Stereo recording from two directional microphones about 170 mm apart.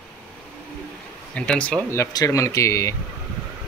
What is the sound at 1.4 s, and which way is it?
Speech, 5° left (ahead or behind).